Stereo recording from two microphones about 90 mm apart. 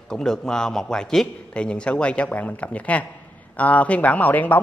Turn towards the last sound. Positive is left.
turn(degrees=20)  # may be behind; listen again after turning